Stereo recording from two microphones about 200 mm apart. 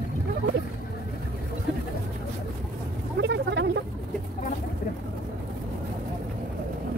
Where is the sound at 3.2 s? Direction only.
60° right (ahead or behind).